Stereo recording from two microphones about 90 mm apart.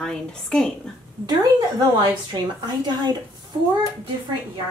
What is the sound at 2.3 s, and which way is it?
Speech, 55° right (ahead or behind).